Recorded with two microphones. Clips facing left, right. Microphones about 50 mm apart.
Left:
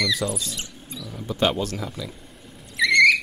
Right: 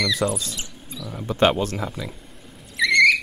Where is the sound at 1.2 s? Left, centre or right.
Right.